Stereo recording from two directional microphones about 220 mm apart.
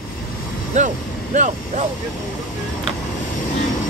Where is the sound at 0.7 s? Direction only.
35° right (ahead or behind).